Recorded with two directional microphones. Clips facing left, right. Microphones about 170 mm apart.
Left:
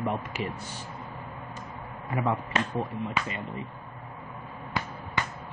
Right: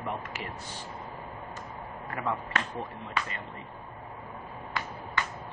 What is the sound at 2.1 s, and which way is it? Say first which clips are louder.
Speech: left 4 dB; 20° left (ahead or behind).